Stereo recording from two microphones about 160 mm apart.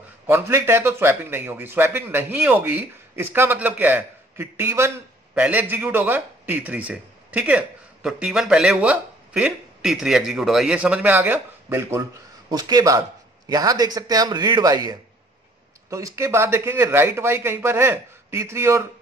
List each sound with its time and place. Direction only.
0.3 s a man's voice: 15° right (ahead or behind)